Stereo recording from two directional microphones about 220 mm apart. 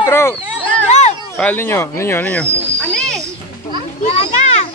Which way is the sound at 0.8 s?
30° left (ahead or behind).